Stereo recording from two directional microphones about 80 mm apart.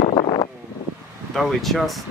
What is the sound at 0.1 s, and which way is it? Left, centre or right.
Wind noise, left.